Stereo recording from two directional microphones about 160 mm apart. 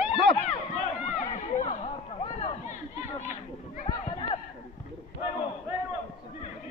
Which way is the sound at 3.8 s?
35° left (ahead or behind).